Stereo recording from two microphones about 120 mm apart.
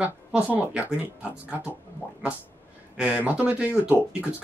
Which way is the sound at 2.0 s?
15° left (ahead or behind).